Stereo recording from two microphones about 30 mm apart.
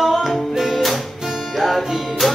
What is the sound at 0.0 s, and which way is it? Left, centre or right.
Music, centre.